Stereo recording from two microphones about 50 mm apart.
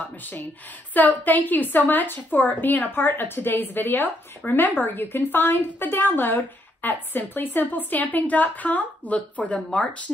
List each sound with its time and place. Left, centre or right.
0.9 s a woman's voice: left